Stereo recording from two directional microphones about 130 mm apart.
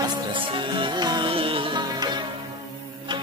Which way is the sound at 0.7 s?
35° right (ahead or behind).